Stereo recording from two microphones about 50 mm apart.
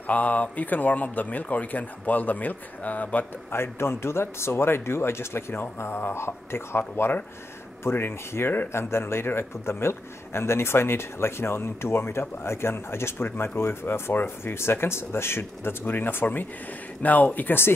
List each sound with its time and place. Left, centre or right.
0.0 s speech: left
3.5 s a man's voice: left
7.8 s a man's voice: left